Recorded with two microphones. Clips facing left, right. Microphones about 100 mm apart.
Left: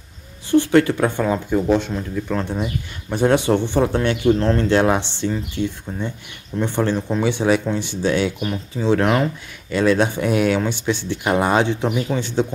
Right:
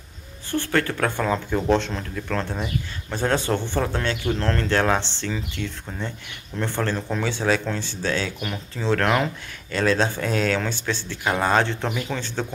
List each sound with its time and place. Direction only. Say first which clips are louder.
0.5 s speech: left 9 dB; 20° left (ahead or behind)